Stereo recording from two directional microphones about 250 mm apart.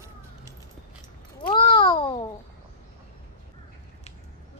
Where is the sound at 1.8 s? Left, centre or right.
Left.